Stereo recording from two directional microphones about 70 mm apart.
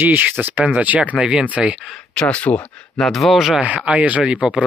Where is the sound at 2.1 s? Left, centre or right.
Centre.